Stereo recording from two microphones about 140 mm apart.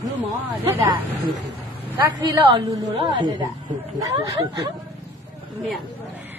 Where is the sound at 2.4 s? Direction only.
40° right (ahead or behind).